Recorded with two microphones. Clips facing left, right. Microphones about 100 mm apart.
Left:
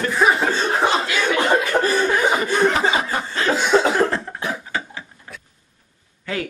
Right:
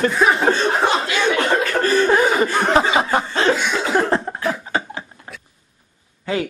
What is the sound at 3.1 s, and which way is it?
Speech, 30° right (ahead or behind).